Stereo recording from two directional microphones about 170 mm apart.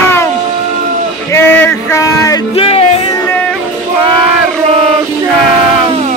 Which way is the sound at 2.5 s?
35° left (ahead or behind).